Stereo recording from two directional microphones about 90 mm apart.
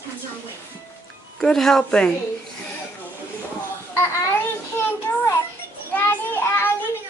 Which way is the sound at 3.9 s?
30° left (ahead or behind).